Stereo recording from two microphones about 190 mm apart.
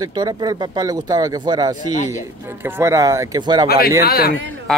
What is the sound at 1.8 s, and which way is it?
Speech, 40° left (ahead or behind).